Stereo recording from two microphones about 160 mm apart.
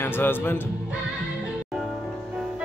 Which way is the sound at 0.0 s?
15° left (ahead or behind).